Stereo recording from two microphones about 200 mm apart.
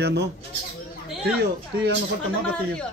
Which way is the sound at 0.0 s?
55° right (ahead or behind).